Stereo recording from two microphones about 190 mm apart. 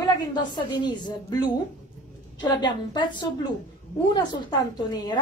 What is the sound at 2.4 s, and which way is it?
A woman's voice, 25° left (ahead or behind).